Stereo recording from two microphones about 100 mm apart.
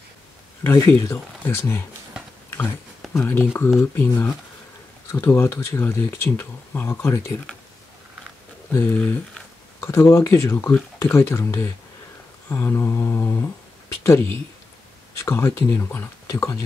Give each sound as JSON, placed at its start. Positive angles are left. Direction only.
{"t": 1.0, "sound": "speech", "side_deg": 25}
{"t": 3.1, "sound": "speech", "side_deg": 25}
{"t": 8.7, "sound": "speech", "side_deg": 20}